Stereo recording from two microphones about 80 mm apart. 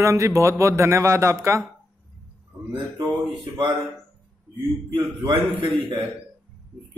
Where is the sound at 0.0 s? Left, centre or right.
Right.